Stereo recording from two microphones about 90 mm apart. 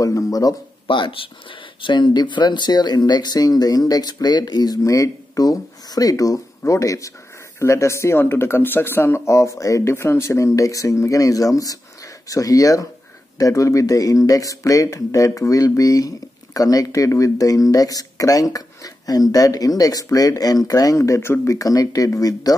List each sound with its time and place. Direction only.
0.0 s speech: 40° left (ahead or behind)
0.8 s speech: 65° left (ahead or behind)
1.8 s speech: 60° left (ahead or behind); by 22.6 s 40° left (ahead or behind)